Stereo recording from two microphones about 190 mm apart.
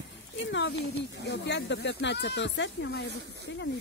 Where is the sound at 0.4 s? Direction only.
70° left (ahead or behind).